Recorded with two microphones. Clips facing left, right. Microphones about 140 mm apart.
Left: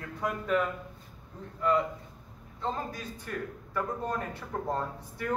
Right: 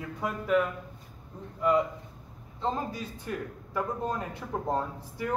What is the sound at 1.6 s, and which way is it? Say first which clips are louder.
A man's voice: right 2 dB; 15° right (ahead or behind).